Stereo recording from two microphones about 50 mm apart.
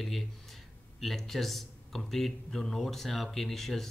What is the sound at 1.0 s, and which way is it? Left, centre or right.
Speech, centre.